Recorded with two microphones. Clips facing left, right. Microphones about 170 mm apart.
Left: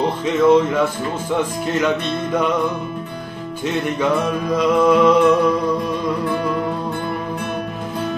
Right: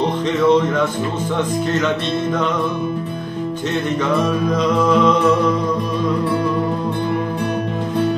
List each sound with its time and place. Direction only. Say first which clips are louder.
0.5 s music: left 1 dB; 10° left (ahead or behind)
4.6 s music: left 3 dB; 10° left (ahead or behind)